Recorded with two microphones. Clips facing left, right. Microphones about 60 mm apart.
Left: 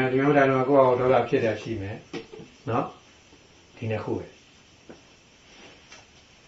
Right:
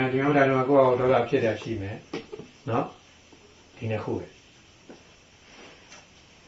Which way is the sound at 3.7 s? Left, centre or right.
Centre.